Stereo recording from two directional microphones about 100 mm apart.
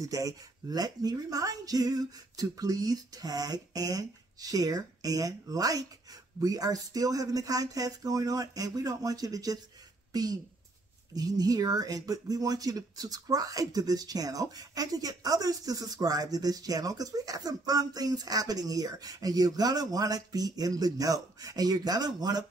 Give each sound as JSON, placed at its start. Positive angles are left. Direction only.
{"t": 0.0, "sound": "speech", "side_deg": -35}